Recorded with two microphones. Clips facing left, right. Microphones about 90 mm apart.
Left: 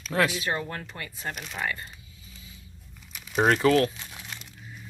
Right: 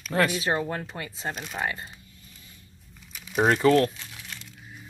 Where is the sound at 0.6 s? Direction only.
15° right (ahead or behind).